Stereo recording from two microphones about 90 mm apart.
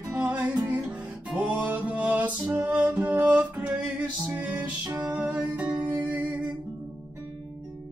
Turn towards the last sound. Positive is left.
turn(degrees=-20)  # may be behind; listen again after turning